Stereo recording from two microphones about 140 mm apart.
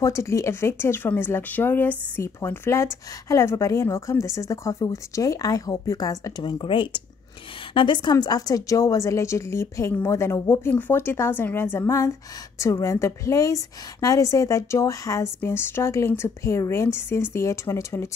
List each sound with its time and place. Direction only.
0.0 s speech: 20° left (ahead or behind)